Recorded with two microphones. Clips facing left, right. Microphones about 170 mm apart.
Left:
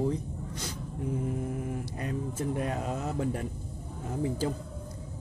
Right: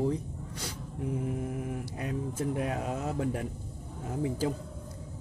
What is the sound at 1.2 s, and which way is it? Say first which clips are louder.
Speech: left 1 dB; 5° right (ahead or behind).